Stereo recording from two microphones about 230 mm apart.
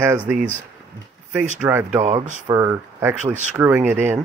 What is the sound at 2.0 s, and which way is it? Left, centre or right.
Speech, right.